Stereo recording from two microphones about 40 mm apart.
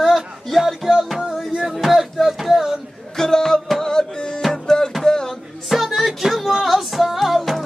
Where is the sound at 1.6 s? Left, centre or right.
Centre.